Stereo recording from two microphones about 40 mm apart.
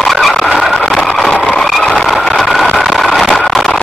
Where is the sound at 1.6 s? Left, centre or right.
Centre.